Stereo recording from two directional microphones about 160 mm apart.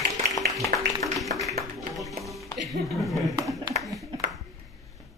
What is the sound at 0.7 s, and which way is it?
Music, centre (ahead or behind).